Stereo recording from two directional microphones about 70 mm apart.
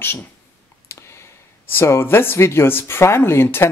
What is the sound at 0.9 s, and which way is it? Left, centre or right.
Clicking, left.